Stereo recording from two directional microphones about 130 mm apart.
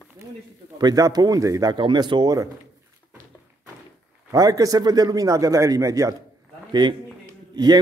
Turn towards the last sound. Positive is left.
turn(degrees=-30)  # may be behind; listen again after turning